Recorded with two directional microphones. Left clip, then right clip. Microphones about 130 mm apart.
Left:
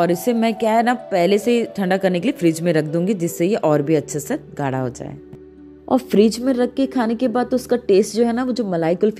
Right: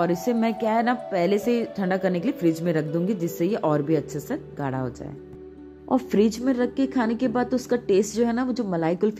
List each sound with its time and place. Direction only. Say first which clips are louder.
0.0 s a woman's voice: left 6 dB; 50° left (ahead or behind)
5.9 s speech: left 6 dB; 50° left (ahead or behind)